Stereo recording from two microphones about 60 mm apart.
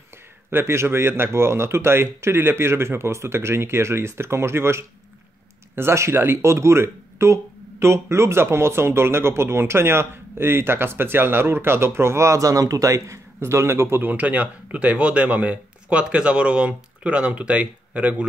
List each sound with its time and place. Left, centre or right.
0.5 s speech: right
13.4 s speech: right
14.0 s speech: right